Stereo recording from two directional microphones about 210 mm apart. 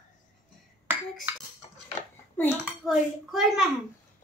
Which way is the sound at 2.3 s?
10° left (ahead or behind).